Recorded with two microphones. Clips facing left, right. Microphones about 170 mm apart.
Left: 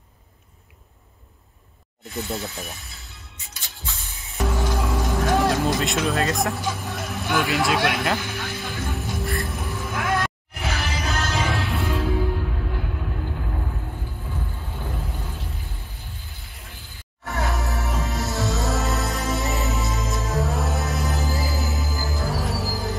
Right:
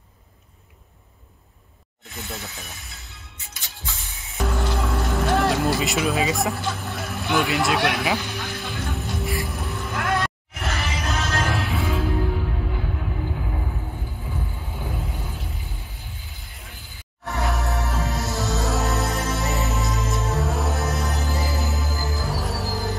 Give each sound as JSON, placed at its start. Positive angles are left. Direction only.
{"t": 2.2, "sound": "speech", "side_deg": 20}
{"t": 4.4, "sound": "music", "side_deg": 0}
{"t": 6.6, "sound": "vehicle", "side_deg": 5}
{"t": 14.9, "sound": "vehicle", "side_deg": 0}
{"t": 16.6, "sound": "music", "side_deg": 0}